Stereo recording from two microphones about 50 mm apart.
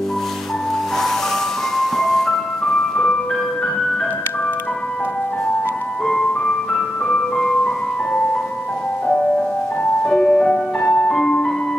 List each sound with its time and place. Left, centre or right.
1.8 s music: centre
6.0 s music: centre
10.0 s music: centre